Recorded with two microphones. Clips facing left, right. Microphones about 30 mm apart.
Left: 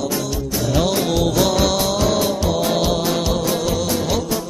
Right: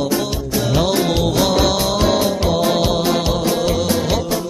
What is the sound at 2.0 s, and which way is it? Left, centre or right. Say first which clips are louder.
Music: right 4 dB; right.